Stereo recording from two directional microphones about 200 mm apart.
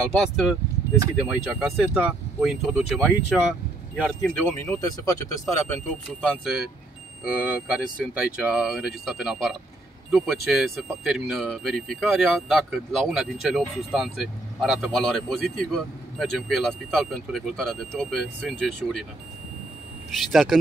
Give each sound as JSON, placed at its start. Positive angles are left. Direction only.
{"t": 0.1, "sound": "speech", "side_deg": 0}
{"t": 3.9, "sound": "speech", "side_deg": 10}
{"t": 6.3, "sound": "speech", "side_deg": -5}
{"t": 20.2, "sound": "speech", "side_deg": 0}